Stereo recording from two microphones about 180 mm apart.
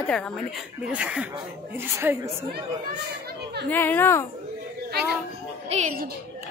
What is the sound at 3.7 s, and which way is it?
Speech, 10° left (ahead or behind).